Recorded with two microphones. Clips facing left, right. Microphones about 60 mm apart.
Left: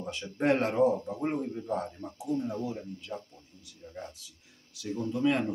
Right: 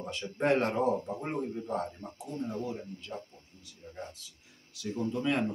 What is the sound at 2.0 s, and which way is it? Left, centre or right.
Speech, left.